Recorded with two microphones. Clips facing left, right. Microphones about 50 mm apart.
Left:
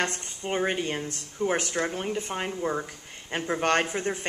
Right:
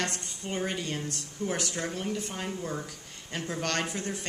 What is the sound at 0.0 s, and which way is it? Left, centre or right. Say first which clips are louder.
Speech: left 4 dB; left.